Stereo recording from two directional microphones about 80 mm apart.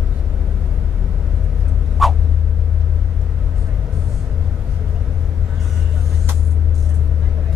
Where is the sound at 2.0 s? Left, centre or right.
Centre.